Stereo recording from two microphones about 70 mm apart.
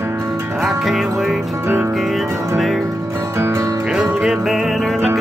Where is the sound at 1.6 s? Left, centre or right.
Right.